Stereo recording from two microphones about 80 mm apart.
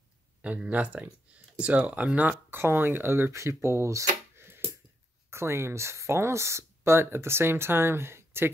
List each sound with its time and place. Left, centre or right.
0.4 s speech: centre